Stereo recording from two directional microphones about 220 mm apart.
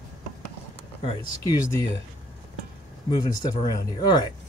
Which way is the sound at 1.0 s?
15° left (ahead or behind).